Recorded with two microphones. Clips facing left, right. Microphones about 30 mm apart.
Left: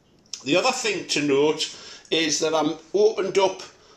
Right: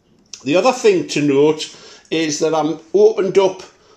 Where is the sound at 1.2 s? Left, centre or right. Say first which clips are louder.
Right 3 dB; centre.